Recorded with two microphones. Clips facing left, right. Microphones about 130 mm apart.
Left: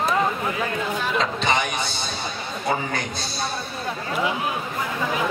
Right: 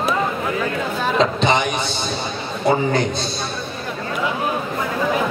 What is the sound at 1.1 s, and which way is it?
Speech, 20° right (ahead or behind).